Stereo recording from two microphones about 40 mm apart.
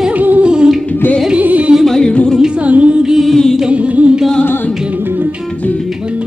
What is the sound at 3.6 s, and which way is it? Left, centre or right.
Music, right.